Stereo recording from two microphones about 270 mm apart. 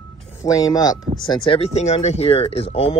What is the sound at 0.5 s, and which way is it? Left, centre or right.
Speech, centre.